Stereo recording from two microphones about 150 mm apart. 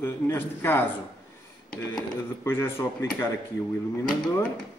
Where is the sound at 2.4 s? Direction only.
15° left (ahead or behind).